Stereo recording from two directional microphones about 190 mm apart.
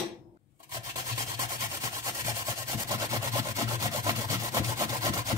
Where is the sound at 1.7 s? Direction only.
20° right (ahead or behind).